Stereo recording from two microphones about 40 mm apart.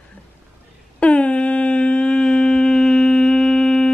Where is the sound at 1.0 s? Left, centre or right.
Left.